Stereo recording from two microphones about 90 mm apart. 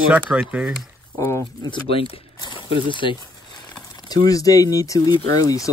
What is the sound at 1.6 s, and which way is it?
Speech, 60° left (ahead or behind).